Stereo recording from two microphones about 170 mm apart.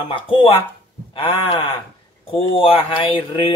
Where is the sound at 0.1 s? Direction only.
30° left (ahead or behind).